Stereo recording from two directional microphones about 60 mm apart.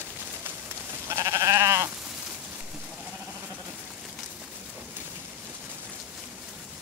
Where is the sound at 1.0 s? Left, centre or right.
Right.